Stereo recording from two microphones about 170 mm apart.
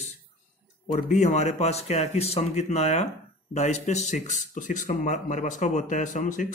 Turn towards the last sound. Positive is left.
turn(degrees=50)  # may be behind; listen again after turning